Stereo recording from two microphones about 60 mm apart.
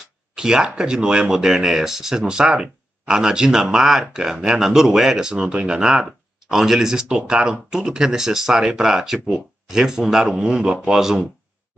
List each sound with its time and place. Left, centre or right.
0.4 s speech: centre